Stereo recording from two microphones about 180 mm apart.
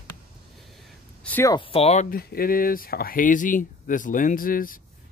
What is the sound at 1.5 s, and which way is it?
Speech, 35° left (ahead or behind).